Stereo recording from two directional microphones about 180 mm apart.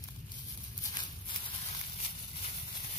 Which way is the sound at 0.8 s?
25° left (ahead or behind).